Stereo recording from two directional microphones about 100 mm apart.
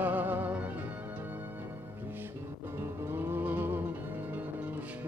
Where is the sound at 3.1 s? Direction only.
20° right (ahead or behind).